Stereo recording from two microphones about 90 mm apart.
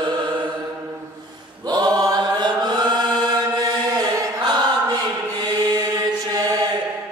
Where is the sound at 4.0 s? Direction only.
45° right (ahead or behind).